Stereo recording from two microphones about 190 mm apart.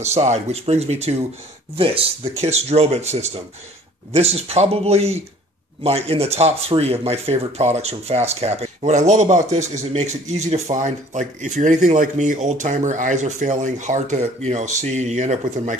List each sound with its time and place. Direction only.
0.0 s speech: 35° right (ahead or behind)